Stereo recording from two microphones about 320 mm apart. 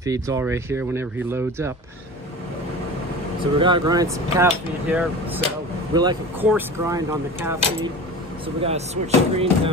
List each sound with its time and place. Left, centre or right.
0.0 s speech: centre
3.5 s speech: centre
8.6 s speech: centre